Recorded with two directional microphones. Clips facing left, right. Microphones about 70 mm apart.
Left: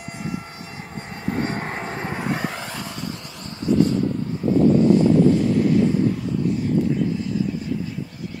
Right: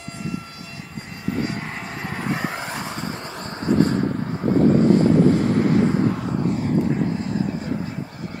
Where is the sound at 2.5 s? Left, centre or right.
Right.